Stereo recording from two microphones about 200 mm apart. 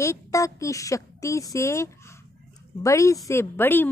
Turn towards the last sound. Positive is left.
turn(degrees=10)  # may be behind; listen again after turning